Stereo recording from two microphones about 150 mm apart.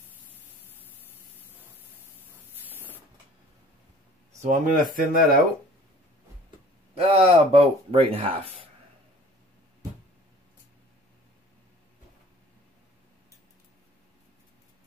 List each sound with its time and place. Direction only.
2.6 s spray: 10° right (ahead or behind)
4.4 s speech: 60° right (ahead or behind)
7.0 s speech: 40° right (ahead or behind)